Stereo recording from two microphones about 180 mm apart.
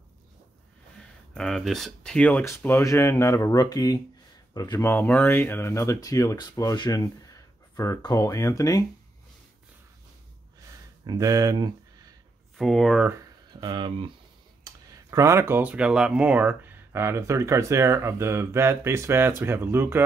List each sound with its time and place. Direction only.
1.3 s speech: 5° left (ahead or behind); by 8.8 s 20° left (ahead or behind)
11.1 s speech: 20° right (ahead or behind)
12.5 s speech: centre (ahead or behind)
13.5 s speech: 25° right (ahead or behind)